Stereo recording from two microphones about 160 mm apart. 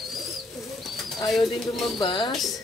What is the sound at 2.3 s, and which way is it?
Speech, centre (ahead or behind).